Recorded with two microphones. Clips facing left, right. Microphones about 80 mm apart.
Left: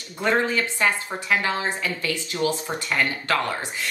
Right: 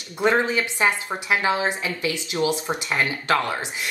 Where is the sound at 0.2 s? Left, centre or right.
Centre.